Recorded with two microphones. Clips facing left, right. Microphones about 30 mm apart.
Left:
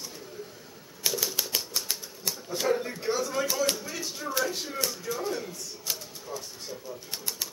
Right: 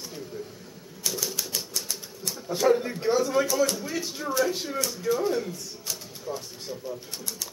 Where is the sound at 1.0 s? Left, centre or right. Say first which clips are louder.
Left 1 dB; left.